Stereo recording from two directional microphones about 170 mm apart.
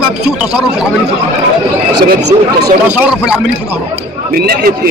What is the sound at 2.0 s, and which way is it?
Speech, 75° right (ahead or behind).